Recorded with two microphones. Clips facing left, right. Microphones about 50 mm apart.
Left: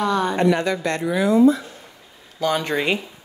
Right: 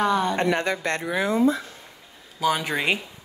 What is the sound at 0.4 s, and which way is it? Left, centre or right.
Speech, right.